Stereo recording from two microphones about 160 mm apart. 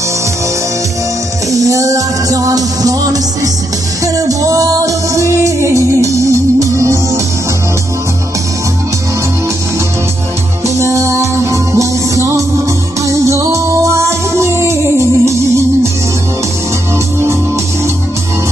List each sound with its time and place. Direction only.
1.5 s music: 20° right (ahead or behind)
10.8 s music: 20° right (ahead or behind)